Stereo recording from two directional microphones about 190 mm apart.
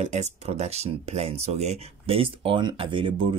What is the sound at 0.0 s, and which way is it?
Speech, 35° right (ahead or behind).